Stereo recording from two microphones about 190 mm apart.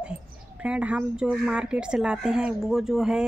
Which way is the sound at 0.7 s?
5° right (ahead or behind).